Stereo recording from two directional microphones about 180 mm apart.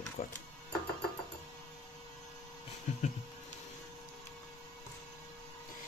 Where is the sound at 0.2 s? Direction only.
50° left (ahead or behind).